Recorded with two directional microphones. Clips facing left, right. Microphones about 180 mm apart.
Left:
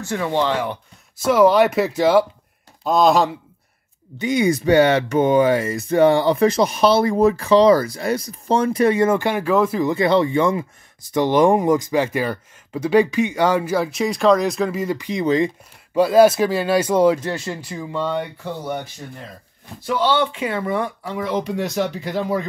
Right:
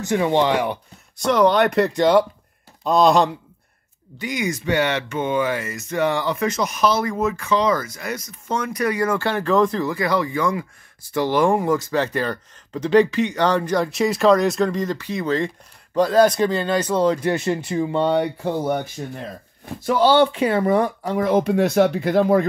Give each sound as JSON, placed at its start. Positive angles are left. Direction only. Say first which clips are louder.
{"t": 0.0, "sound": "speech", "louder": "right 3 dB", "side_deg": -20}
{"t": 1.1, "sound": "speech", "louder": "left 3 dB", "side_deg": 5}
{"t": 4.2, "sound": "speech", "louder": "left 7 dB", "side_deg": 30}
{"t": 9.8, "sound": "speech", "louder": "left 5 dB", "side_deg": 25}
{"t": 17.5, "sound": "speech", "louder": "right 7 dB", "side_deg": -25}
{"t": 20.0, "sound": "speech", "louder": "right 4 dB", "side_deg": -40}